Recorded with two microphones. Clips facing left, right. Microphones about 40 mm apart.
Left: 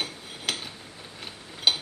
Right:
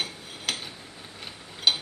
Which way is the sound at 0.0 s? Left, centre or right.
Centre.